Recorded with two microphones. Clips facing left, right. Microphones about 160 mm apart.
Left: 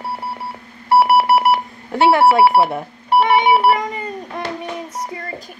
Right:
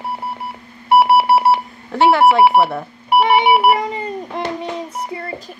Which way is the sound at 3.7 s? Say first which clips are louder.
Right 2 dB; 25° right (ahead or behind).